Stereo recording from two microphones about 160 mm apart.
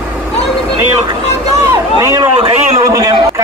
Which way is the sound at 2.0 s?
20° right (ahead or behind).